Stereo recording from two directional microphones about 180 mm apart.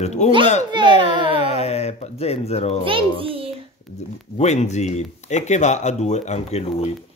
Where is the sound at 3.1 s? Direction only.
30° right (ahead or behind).